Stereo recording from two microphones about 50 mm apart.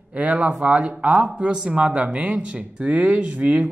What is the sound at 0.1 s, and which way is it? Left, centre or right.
Speech, right.